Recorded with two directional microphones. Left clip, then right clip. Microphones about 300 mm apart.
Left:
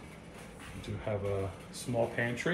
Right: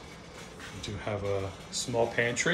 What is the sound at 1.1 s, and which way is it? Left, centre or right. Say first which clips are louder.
Speech: right 2 dB; centre.